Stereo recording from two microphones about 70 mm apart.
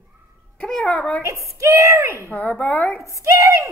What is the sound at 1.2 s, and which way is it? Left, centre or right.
Speech, right.